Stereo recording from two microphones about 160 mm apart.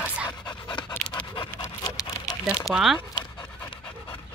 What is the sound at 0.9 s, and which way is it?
Dog, 10° left (ahead or behind).